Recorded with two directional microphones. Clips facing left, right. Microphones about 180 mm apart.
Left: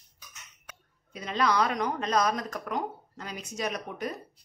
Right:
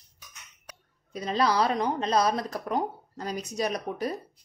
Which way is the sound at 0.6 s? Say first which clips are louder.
Right 2 dB; 35° right (ahead or behind).